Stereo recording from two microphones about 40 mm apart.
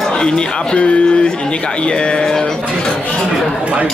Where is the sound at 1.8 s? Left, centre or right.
Left.